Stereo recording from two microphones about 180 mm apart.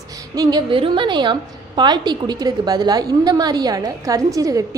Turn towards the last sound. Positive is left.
turn(degrees=-20)  # may be behind; listen again after turning